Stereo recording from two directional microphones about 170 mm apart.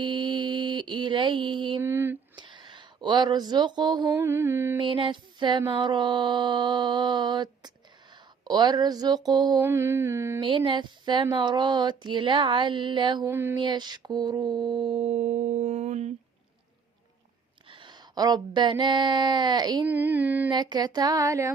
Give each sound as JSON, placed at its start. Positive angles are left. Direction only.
{"t": 0.0, "sound": "mantra", "side_deg": -25}
{"t": 1.8, "sound": "a sound", "side_deg": -15}
{"t": 2.3, "sound": "a sound", "side_deg": -25}
{"t": 4.1, "sound": "mantra", "side_deg": -15}
{"t": 4.8, "sound": "speech", "side_deg": -30}
{"t": 10.4, "sound": "speech", "side_deg": -30}
{"t": 13.3, "sound": "mantra", "side_deg": -15}
{"t": 13.6, "sound": "speech", "side_deg": -25}
{"t": 17.6, "sound": "a sound", "side_deg": -30}
{"t": 19.9, "sound": "mantra", "side_deg": -10}
{"t": 20.4, "sound": "speech", "side_deg": -25}